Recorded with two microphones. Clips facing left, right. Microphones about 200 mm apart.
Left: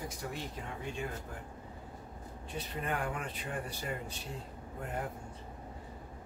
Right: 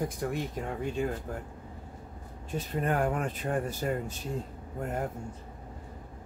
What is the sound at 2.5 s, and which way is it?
Speech, 45° right (ahead or behind).